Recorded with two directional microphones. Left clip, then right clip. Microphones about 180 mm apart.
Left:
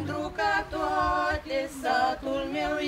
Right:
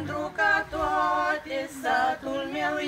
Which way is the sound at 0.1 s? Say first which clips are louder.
Right 3 dB; 10° left (ahead or behind).